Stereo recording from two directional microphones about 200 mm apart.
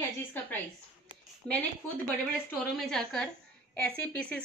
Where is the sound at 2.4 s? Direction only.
Centre (ahead or behind).